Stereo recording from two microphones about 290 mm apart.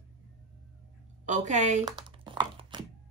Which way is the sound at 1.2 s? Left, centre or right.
Right.